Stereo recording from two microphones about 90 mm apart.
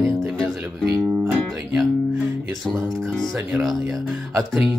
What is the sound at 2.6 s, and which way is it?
Speech, 5° left (ahead or behind).